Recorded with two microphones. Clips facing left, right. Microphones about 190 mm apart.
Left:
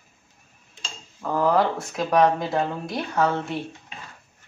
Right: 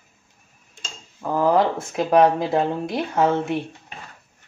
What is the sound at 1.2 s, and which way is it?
Speech, 20° right (ahead or behind).